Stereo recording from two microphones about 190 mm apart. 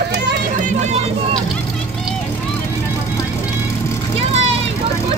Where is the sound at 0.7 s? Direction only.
35° right (ahead or behind).